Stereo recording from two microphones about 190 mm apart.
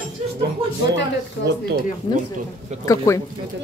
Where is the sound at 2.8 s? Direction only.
20° left (ahead or behind).